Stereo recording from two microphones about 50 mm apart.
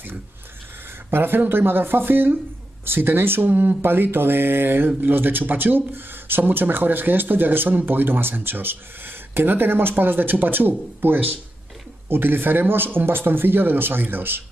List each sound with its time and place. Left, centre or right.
1.1 s speech: right